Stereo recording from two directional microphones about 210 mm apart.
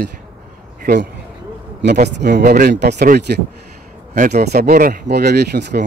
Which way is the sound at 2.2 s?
45° right (ahead or behind).